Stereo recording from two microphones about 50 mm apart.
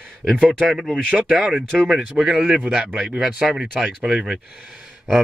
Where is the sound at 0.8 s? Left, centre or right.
Centre.